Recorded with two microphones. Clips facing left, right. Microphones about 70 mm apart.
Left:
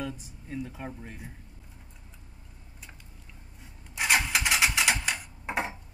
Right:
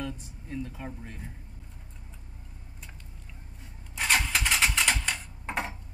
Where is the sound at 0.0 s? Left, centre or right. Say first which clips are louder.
Even; centre.